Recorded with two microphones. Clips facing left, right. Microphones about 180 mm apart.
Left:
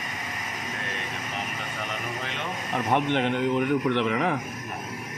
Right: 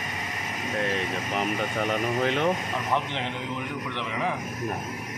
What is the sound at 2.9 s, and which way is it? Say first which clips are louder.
Speech: left 6 dB; 60° left (ahead or behind).